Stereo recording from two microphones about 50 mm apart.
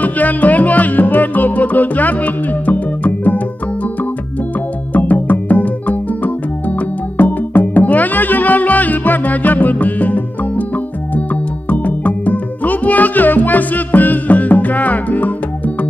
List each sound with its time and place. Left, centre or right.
0.0 s music: left
4.9 s music: left
11.7 s music: left